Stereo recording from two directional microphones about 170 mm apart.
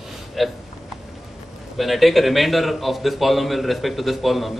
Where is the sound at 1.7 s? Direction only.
Centre (ahead or behind).